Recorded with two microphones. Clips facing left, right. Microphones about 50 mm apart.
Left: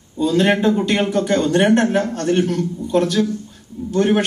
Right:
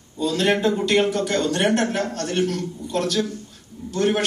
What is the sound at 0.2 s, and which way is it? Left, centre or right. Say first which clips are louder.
A man's voice: left 4 dB; centre.